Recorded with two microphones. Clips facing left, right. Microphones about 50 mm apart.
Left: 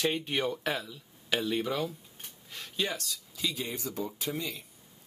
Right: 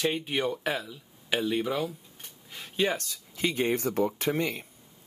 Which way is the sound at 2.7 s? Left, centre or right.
Right.